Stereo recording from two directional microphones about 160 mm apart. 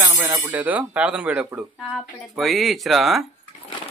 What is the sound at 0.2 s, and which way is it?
Speech, 10° right (ahead or behind).